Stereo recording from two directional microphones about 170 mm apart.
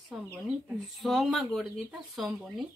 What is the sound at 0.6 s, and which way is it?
Speech, centre (ahead or behind).